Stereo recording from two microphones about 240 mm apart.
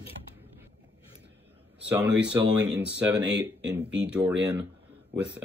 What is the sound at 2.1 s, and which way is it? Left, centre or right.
Speech, right.